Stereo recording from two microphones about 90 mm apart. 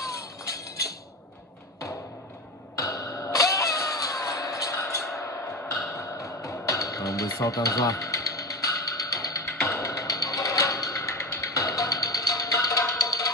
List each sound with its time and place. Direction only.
0.0 s music: 40° left (ahead or behind)
2.7 s music: 40° left (ahead or behind)